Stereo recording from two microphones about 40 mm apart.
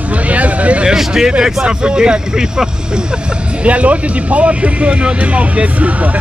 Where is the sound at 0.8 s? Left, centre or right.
Centre.